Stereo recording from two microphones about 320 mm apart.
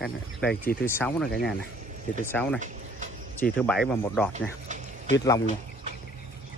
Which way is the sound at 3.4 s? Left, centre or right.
Centre.